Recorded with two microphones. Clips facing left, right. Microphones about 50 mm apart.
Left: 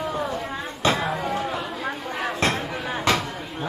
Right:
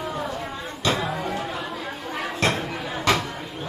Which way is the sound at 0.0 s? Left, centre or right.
Centre.